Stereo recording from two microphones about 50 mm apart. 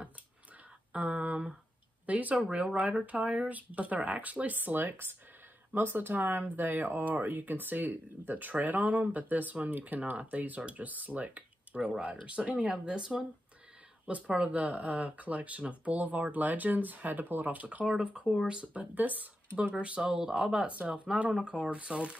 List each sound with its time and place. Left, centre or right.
0.9 s speech: right
2.0 s speech: right
2.4 s speech: right
14.0 s speech: right
18.0 s speech: right
18.9 s speech: right
19.7 s speech: right
20.6 s speech: right